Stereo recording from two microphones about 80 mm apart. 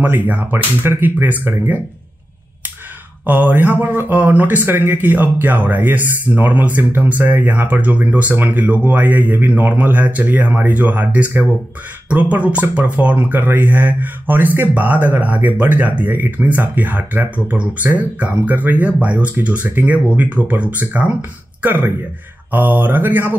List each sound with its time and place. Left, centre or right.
0.0 s speech: right
3.3 s speech: right